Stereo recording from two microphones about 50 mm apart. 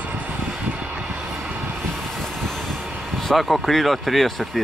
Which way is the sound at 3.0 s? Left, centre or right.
Centre.